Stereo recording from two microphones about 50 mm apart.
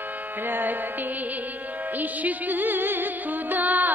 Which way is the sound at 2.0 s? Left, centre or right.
Right.